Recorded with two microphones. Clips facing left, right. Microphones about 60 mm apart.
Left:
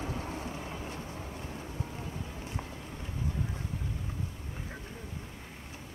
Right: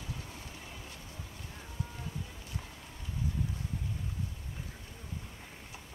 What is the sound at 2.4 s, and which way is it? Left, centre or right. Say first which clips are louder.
Run: left 5 dB; left.